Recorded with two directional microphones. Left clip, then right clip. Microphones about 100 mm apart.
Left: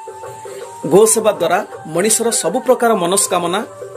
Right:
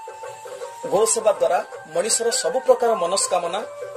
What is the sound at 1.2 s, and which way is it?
Speech, 10° left (ahead or behind).